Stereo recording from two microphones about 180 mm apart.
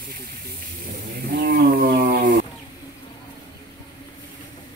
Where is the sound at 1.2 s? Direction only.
55° right (ahead or behind).